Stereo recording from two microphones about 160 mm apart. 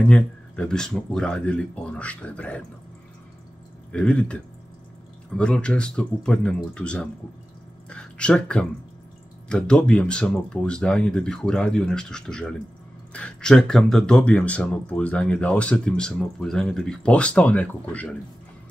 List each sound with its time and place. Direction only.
0.1 s speech: 5° left (ahead or behind)
3.9 s speech: 5° left (ahead or behind)